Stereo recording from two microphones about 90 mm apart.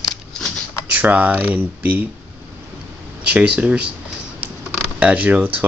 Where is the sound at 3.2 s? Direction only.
15° right (ahead or behind).